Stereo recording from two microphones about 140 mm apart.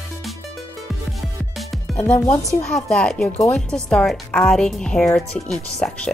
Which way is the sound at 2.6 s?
5° left (ahead or behind).